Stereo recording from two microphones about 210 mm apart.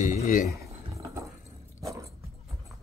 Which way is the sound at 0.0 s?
40° left (ahead or behind).